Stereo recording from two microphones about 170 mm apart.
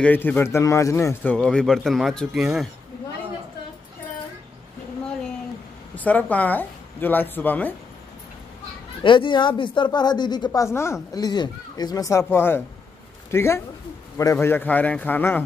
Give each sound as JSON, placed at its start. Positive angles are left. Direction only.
{"t": 0.0, "sound": "speech", "side_deg": 10}
{"t": 5.9, "sound": "a woman's voice", "side_deg": 10}
{"t": 9.0, "sound": "a woman's voice", "side_deg": 30}